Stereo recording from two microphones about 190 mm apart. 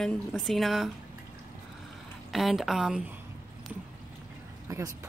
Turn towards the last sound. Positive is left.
turn(degrees=-15)  # may be behind; listen again after turning